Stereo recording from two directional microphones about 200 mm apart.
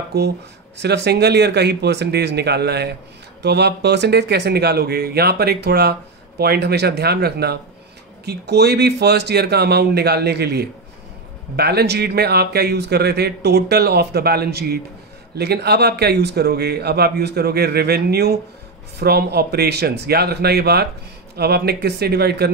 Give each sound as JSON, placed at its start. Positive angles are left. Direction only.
{"t": 0.1, "sound": "speech", "side_deg": -55}